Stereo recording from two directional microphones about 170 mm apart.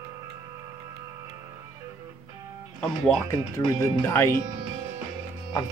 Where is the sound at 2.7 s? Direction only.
5° left (ahead or behind).